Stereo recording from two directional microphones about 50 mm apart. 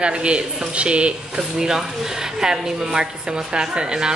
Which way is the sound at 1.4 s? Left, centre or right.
Centre.